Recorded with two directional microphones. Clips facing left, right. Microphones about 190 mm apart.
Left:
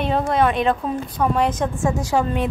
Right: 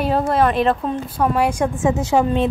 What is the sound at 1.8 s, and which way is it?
Speech, 20° right (ahead or behind).